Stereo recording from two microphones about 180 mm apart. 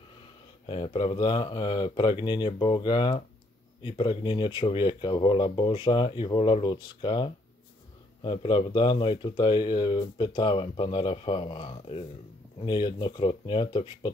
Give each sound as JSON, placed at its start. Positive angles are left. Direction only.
{"t": 0.7, "sound": "speech", "side_deg": 30}